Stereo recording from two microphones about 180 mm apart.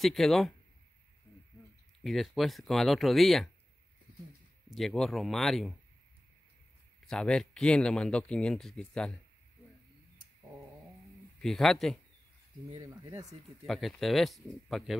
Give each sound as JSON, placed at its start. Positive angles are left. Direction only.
{"t": 0.0, "sound": "speech", "side_deg": 0}
{"t": 2.0, "sound": "speech", "side_deg": 0}
{"t": 4.6, "sound": "speech", "side_deg": 0}
{"t": 7.1, "sound": "speech", "side_deg": 5}
{"t": 11.4, "sound": "speech", "side_deg": 0}
{"t": 12.6, "sound": "speech", "side_deg": -20}
{"t": 13.7, "sound": "speech", "side_deg": 0}